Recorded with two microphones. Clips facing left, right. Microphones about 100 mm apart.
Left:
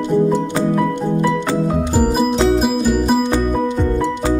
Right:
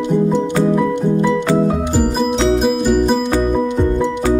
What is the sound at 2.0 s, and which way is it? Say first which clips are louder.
Music: left 2 dB; 5° left (ahead or behind).